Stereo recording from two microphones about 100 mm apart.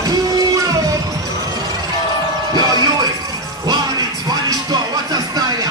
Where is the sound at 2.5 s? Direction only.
40° right (ahead or behind).